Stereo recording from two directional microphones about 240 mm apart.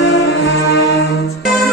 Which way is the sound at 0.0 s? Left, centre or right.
Left.